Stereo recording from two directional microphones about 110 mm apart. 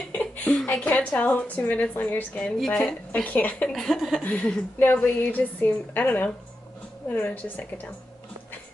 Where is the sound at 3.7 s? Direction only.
5° left (ahead or behind).